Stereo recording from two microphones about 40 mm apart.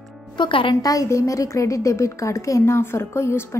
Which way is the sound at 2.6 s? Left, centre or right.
Left.